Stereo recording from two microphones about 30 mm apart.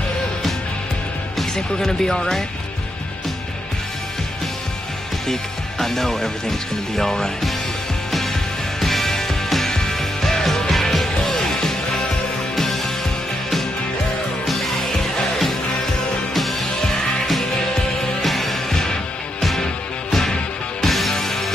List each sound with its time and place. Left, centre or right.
1.8 s speech: centre
5.2 s speech: centre
8.1 s music: centre
10.7 s music: centre
14.9 s music: centre
16.8 s music: centre
18.2 s music: centre